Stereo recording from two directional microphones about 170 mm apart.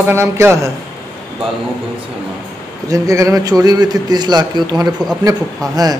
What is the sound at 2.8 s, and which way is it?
Speech, 20° right (ahead or behind).